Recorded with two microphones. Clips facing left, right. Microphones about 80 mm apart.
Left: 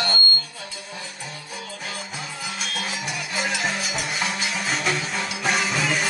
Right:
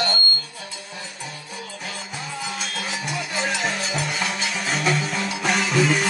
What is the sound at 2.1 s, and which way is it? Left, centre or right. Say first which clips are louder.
Music: right 2 dB; centre.